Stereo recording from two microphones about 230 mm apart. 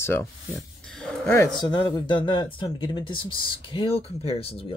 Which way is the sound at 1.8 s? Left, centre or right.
Centre.